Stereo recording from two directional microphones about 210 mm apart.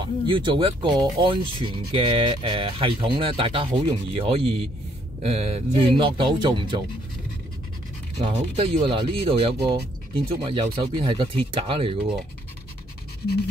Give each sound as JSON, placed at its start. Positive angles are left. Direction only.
{"t": 0.3, "sound": "speech", "side_deg": -25}
{"t": 8.2, "sound": "speech", "side_deg": -30}